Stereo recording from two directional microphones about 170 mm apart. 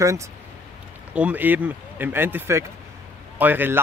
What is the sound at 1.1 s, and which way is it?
Speech, 10° right (ahead or behind).